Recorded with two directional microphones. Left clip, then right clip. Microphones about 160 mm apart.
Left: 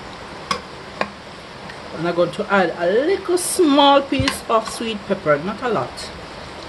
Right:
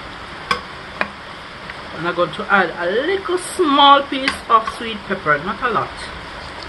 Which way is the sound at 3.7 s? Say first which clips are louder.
Right 3 dB; 75° left (ahead or behind).